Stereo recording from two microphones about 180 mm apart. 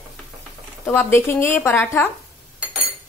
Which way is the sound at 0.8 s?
15° left (ahead or behind).